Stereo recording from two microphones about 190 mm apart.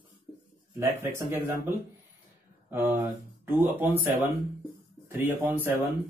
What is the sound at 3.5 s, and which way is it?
Speech, 10° right (ahead or behind).